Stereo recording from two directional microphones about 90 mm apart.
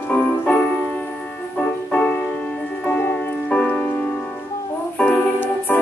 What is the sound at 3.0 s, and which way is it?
Music, 20° left (ahead or behind).